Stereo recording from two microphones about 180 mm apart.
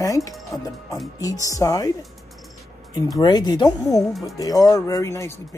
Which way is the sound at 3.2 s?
25° left (ahead or behind).